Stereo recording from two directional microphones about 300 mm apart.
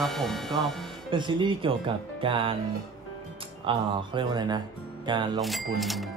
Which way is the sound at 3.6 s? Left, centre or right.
Centre.